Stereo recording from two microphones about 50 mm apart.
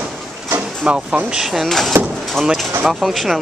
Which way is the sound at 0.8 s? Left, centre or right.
Right.